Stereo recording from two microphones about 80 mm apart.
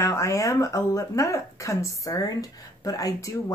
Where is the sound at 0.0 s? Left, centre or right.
Left.